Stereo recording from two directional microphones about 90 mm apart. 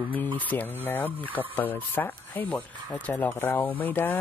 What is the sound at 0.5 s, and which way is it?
Speech, 20° left (ahead or behind).